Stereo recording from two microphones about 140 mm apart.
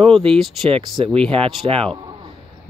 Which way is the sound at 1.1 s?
40° right (ahead or behind).